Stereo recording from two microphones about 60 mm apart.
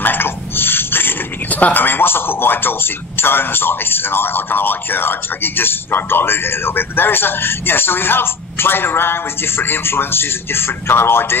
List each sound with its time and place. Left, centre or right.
0.0 s speech: left